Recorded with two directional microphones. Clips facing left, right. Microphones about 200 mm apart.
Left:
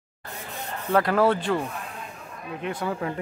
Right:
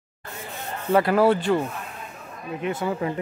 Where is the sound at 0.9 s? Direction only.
5° right (ahead or behind).